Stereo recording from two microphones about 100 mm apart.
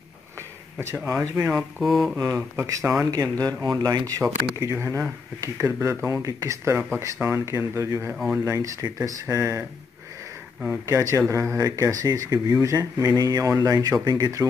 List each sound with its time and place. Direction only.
1.6 s speech: centre (ahead or behind)
2.3 s speech: 30° right (ahead or behind)
4.2 s speech: 30° right (ahead or behind)
8.1 s speech: 5° right (ahead or behind)
8.5 s speech: 35° right (ahead or behind)
10.7 s speech: 30° right (ahead or behind)